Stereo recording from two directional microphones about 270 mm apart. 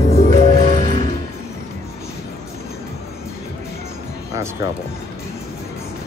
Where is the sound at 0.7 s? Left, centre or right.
Right.